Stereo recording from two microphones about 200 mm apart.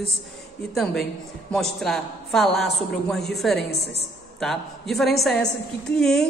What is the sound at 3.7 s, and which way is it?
Speech, 55° left (ahead or behind).